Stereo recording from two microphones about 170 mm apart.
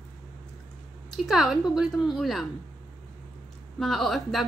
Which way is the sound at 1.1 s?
Centre (ahead or behind).